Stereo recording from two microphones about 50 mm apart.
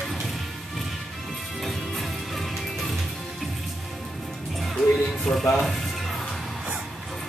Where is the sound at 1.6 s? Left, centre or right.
Centre.